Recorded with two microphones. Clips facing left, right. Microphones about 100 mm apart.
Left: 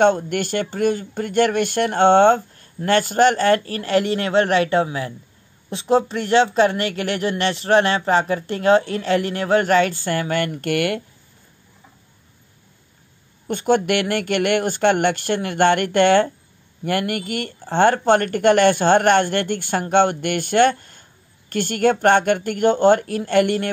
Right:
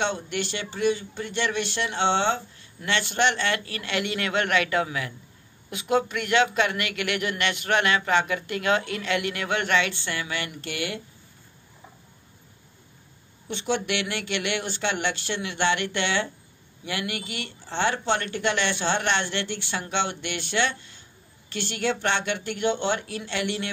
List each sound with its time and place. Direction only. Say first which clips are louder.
0.0 s speech: left 11 dB; 50° left (ahead or behind)
13.5 s speech: left 9 dB; 50° left (ahead or behind)